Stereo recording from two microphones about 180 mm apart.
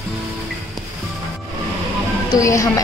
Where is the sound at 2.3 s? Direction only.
15° left (ahead or behind).